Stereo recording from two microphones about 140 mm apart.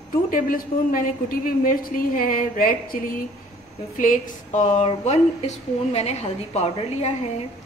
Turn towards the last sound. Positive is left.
turn(degrees=50)  # may be behind; listen again after turning